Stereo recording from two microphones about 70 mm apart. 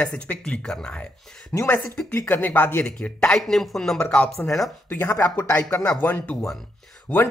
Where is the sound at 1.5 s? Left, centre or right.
Left.